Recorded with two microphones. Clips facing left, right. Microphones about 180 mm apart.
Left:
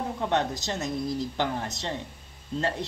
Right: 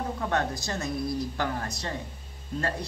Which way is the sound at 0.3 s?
20° left (ahead or behind).